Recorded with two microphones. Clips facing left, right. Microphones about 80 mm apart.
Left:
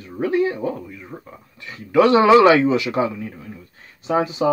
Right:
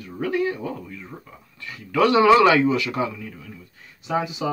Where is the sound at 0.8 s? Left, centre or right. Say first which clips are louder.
Left 2 dB; centre.